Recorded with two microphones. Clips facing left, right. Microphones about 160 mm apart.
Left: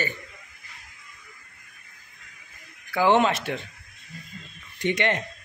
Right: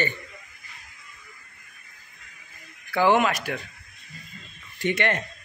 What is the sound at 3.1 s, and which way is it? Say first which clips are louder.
Speech: left 1 dB; 25° left (ahead or behind).